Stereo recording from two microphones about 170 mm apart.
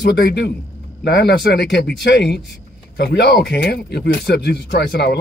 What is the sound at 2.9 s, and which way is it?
Speech, 75° left (ahead or behind).